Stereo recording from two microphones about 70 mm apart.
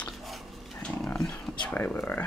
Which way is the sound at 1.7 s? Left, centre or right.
Left.